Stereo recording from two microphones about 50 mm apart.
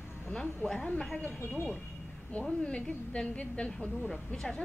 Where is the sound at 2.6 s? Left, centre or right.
Left.